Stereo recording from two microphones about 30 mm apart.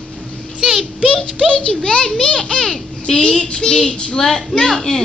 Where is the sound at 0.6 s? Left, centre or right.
Right.